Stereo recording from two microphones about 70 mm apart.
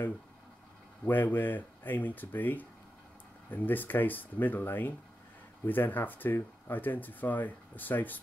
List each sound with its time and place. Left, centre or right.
1.0 s speech: left